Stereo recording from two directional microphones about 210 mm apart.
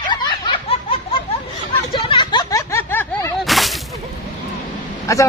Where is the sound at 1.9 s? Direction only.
25° left (ahead or behind); by 3.7 s centre (ahead or behind).